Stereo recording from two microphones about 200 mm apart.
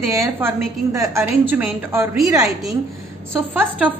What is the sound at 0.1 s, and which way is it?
A woman's voice, 15° right (ahead or behind).